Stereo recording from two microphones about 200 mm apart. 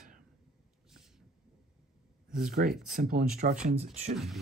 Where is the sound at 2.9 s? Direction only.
45° right (ahead or behind).